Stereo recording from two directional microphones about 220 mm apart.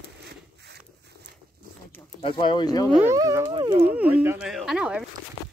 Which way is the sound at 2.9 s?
15° right (ahead or behind).